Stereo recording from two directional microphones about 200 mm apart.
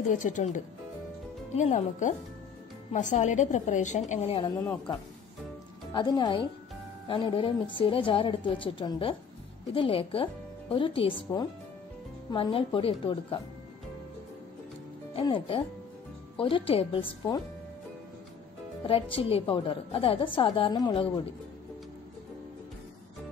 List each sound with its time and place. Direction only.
0.2 s a woman's voice: 40° left (ahead or behind)
1.6 s a woman's voice: 40° left (ahead or behind)
5.9 s a woman's voice: 20° left (ahead or behind)
15.1 s a woman's voice: 25° left (ahead or behind)
18.9 s a woman's voice: 25° left (ahead or behind)